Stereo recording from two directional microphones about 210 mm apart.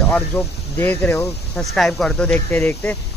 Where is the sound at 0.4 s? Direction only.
10° left (ahead or behind).